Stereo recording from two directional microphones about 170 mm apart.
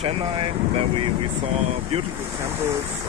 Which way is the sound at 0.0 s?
35° right (ahead or behind).